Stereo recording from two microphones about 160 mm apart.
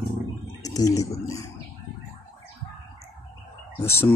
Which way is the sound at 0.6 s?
20° left (ahead or behind).